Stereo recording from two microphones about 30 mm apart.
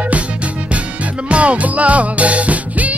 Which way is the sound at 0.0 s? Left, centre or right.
Right.